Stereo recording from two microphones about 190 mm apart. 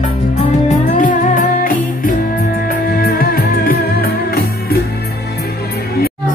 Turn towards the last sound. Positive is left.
turn(degrees=55)  # may be behind; listen again after turning